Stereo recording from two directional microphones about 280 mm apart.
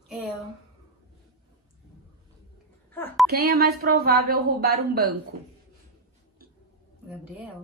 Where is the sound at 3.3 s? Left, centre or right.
Right.